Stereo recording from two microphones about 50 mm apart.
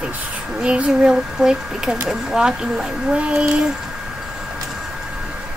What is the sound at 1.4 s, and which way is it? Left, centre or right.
Speech, centre.